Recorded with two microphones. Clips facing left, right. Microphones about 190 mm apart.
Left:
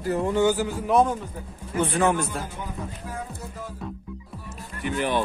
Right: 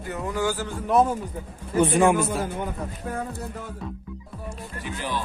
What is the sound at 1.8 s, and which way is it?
Speech, 15° right (ahead or behind).